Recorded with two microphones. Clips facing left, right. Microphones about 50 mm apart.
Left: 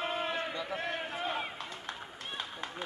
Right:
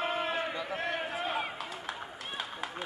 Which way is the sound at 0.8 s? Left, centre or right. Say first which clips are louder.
Right 2 dB; centre.